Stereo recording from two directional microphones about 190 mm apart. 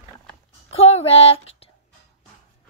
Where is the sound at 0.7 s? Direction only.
30° left (ahead or behind).